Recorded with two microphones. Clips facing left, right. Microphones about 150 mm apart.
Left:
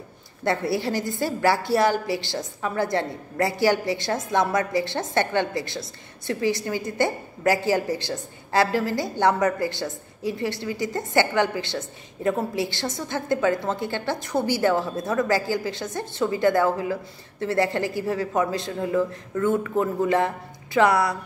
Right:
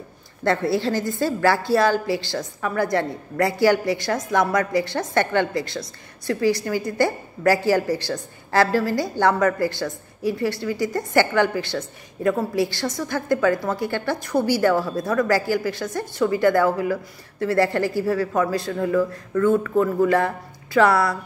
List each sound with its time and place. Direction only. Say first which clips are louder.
0.7 s a woman's voice: right 3 dB; 15° left (ahead or behind)